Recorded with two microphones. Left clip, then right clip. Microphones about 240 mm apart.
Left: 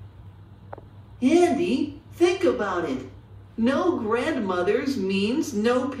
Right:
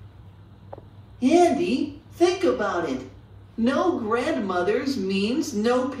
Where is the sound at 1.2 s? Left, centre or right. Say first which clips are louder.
Right 1 dB; centre.